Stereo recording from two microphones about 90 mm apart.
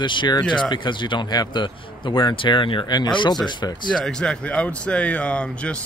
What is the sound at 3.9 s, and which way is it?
A man's voice, 5° left (ahead or behind).